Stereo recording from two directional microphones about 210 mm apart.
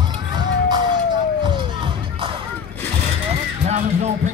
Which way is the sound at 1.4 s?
25° right (ahead or behind).